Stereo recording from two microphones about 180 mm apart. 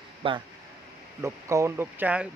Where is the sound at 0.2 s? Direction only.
30° right (ahead or behind).